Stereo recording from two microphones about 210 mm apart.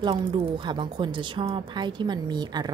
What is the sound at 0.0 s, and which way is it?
A woman's voice, 20° right (ahead or behind).